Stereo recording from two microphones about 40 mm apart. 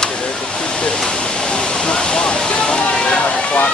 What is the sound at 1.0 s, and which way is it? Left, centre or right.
Waterfall, left.